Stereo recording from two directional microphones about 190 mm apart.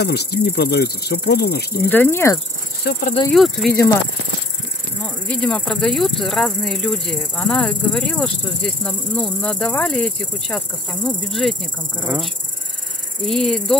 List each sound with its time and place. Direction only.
0.0 s speech: 60° left (ahead or behind)
1.9 s speech: 10° left (ahead or behind)
2.8 s speech: 60° left (ahead or behind)
3.3 s speech: centre (ahead or behind)
5.4 s speech: centre (ahead or behind)
13.2 s speech: centre (ahead or behind)